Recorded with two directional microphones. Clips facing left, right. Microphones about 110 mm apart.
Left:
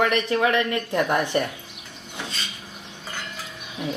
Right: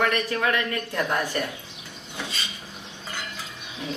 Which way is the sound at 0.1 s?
25° left (ahead or behind).